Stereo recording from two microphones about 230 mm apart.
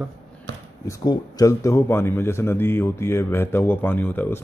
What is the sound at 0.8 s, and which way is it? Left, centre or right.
A man's voice, centre.